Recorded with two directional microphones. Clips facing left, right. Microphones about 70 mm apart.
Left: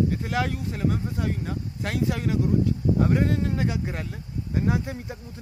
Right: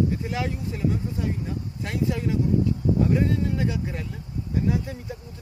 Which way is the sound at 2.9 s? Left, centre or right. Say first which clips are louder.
Even; left.